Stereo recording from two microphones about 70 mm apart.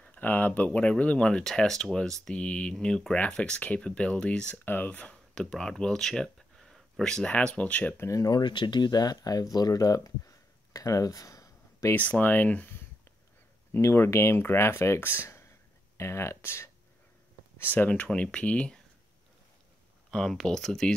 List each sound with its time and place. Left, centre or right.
0.0 s speech: left
8.1 s speech: left
11.9 s speech: left
13.7 s speech: left
17.7 s speech: centre
20.1 s speech: centre